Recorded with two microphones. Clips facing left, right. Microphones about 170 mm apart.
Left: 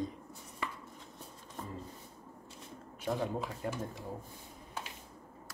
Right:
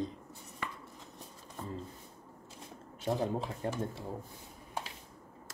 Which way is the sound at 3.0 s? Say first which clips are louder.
Right 2 dB; 30° right (ahead or behind).